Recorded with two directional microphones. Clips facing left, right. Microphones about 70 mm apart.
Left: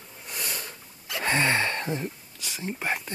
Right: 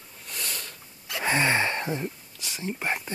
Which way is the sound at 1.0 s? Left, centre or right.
Centre.